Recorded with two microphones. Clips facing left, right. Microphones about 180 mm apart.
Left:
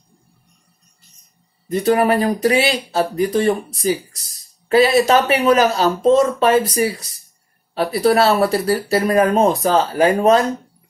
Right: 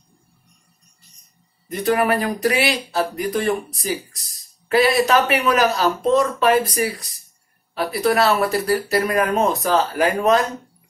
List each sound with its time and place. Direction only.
1.7 s speech: 30° left (ahead or behind)